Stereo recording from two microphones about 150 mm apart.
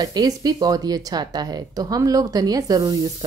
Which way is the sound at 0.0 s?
25° right (ahead or behind).